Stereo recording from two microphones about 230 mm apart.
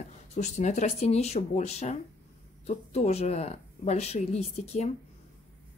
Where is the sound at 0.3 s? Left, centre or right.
Left.